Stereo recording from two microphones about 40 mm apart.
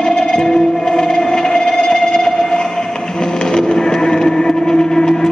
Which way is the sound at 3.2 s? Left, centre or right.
Centre.